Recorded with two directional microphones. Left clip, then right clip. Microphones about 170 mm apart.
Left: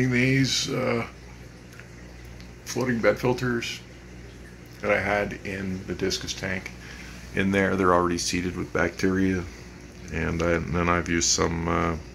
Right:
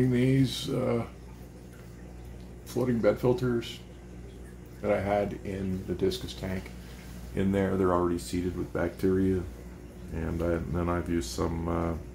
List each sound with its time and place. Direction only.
0.1 s speech: 20° right (ahead or behind)
2.6 s speech: 15° right (ahead or behind)
4.8 s speech: 20° right (ahead or behind)
7.3 s speech: 5° left (ahead or behind)